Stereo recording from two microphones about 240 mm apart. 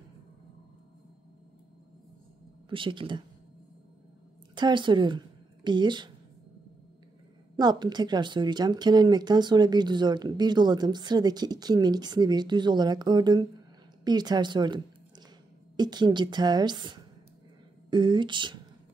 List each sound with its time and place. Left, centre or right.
2.7 s speech: right
4.6 s speech: centre
7.5 s a woman's voice: centre